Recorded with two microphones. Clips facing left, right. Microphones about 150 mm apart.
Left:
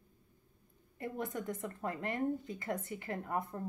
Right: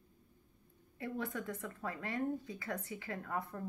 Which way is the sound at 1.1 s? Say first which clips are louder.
Left 1 dB; 20° left (ahead or behind).